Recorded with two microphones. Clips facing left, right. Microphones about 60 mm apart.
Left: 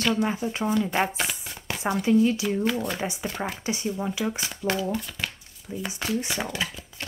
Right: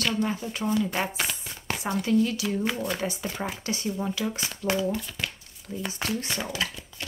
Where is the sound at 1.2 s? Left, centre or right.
Centre.